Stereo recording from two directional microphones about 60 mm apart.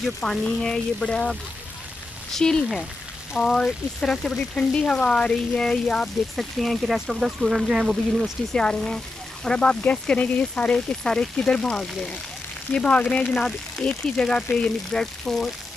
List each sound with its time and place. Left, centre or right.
0.0 s speech: centre
2.3 s speech: centre
6.3 s speech: centre
8.5 s speech: centre